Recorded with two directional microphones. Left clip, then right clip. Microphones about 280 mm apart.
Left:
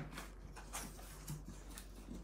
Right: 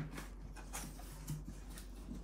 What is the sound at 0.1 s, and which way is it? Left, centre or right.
Dog, centre.